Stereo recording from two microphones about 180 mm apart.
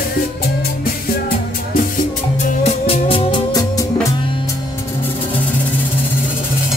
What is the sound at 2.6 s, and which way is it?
Music, 30° left (ahead or behind).